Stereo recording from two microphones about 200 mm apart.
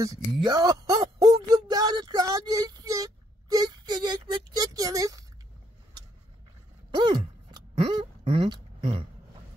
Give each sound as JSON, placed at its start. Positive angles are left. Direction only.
{"t": 0.0, "sound": "speech", "side_deg": -20}
{"t": 1.2, "sound": "child singing", "side_deg": -20}
{"t": 7.0, "sound": "a sound", "side_deg": -25}